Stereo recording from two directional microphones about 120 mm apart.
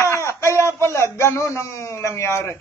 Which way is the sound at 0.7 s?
25° left (ahead or behind).